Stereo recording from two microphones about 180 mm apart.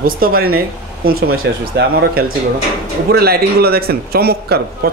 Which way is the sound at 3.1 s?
60° right (ahead or behind).